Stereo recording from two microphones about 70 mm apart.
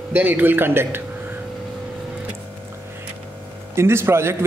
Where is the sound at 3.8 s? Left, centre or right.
Right.